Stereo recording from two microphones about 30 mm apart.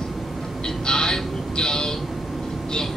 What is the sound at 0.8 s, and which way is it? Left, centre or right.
Speech, left.